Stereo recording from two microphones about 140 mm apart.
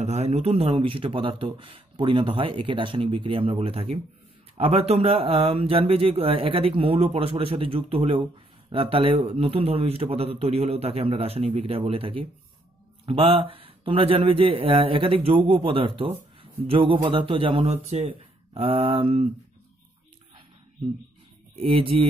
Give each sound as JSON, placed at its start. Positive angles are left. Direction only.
{"t": 0.0, "sound": "speech", "side_deg": -50}
{"t": 21.5, "sound": "speech", "side_deg": -40}